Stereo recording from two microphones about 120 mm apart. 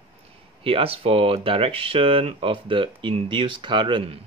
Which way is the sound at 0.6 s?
50° right (ahead or behind).